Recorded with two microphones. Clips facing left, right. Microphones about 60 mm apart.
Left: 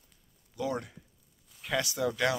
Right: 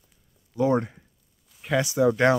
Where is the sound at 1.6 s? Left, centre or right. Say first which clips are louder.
Right 9 dB; centre.